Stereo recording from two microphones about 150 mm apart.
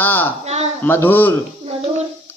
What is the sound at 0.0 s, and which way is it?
Speech, 15° left (ahead or behind).